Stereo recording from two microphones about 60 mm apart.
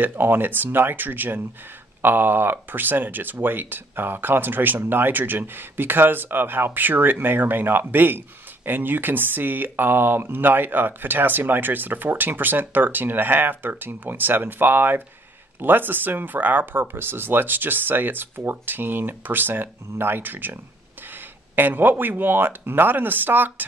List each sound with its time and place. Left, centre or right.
0.0 s speech: right
21.5 s speech: right